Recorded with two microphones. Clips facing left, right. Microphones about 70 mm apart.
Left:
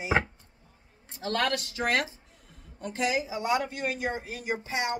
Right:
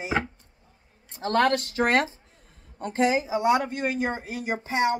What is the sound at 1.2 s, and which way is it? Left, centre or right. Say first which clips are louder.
Speech: right 6 dB; right.